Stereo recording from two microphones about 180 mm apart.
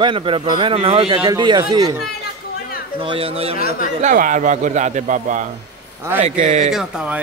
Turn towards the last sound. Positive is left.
turn(degrees=-5)  # may be behind; listen again after turning